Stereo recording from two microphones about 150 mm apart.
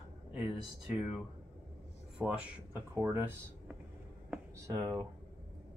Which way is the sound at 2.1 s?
10° right (ahead or behind).